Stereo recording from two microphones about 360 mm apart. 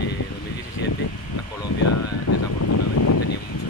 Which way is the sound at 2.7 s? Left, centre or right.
Left.